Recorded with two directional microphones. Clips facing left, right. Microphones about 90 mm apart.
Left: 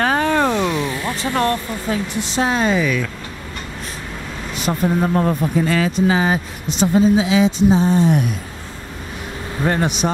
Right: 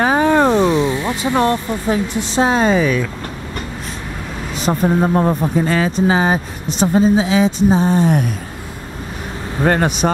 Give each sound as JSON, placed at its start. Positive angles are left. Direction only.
{"t": 0.0, "sound": "a sound", "side_deg": -15}
{"t": 0.5, "sound": "speech", "side_deg": -25}
{"t": 4.6, "sound": "speech", "side_deg": -25}
{"t": 9.7, "sound": "speech", "side_deg": -50}